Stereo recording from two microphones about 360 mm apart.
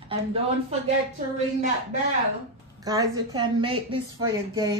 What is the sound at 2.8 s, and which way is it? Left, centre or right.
Speech, centre.